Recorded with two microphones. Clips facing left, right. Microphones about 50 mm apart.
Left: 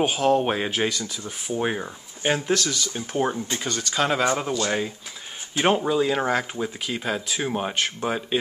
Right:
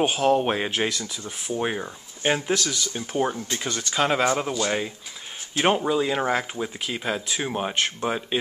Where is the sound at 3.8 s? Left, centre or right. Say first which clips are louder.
Right 1 dB; centre.